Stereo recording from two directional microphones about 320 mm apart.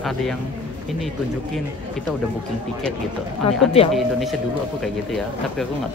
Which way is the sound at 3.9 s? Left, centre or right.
Centre.